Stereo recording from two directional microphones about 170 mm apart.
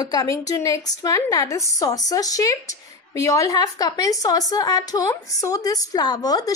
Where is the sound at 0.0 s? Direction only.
20° left (ahead or behind).